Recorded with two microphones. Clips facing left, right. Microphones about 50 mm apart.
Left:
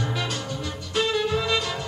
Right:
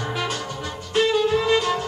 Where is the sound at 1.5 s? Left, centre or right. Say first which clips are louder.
Right 6 dB; right.